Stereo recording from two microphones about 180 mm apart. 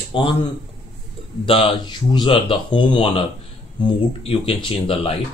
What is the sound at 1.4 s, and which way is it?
Speech, 30° left (ahead or behind).